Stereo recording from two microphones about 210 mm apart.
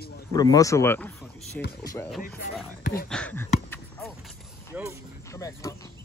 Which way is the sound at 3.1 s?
10° left (ahead or behind).